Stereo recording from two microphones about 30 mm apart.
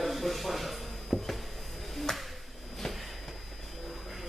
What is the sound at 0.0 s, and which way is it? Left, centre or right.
Wood, centre.